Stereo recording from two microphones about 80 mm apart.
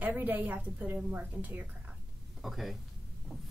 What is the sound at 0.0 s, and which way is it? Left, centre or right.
A woman's voice, right.